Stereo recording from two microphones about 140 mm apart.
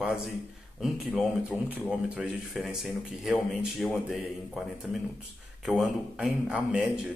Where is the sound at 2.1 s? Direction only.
5° right (ahead or behind).